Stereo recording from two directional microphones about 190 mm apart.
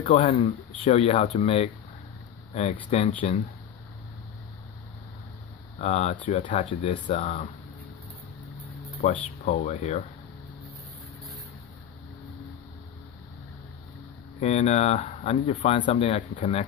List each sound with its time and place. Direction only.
0.0 s speech: 35° left (ahead or behind)
5.8 s speech: 35° left (ahead or behind)
9.0 s speech: 35° left (ahead or behind)
14.4 s speech: 35° left (ahead or behind)